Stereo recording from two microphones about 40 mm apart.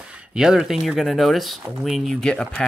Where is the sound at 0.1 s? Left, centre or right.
Right.